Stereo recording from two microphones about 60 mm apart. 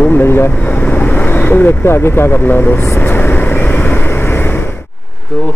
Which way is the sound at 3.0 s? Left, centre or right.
Left.